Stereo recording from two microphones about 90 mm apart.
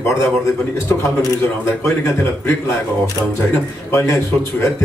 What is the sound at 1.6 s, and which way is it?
Speech, 30° left (ahead or behind).